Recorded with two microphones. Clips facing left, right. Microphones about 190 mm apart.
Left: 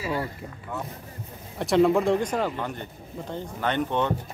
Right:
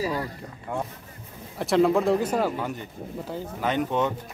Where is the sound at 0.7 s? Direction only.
50° right (ahead or behind).